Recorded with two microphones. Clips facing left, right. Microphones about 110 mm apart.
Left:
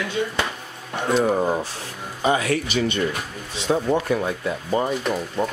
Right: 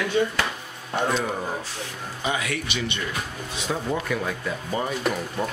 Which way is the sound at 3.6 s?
25° left (ahead or behind).